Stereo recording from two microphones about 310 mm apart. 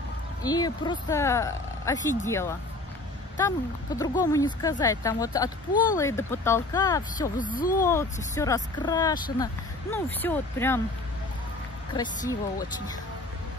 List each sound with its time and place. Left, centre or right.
0.4 s speech: centre
7.3 s speech: left
7.7 s speech: centre
11.9 s speech: centre